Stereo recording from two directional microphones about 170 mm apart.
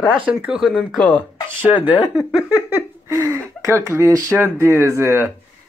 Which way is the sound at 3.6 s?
15° right (ahead or behind).